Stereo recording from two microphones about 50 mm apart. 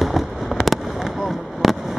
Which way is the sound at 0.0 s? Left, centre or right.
Centre.